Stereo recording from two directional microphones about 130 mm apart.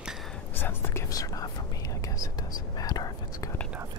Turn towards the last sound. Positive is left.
turn(degrees=30)  # may be behind; listen again after turning